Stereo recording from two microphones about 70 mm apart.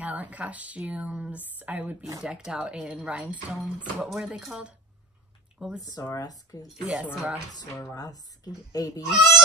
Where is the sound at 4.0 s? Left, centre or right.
Centre.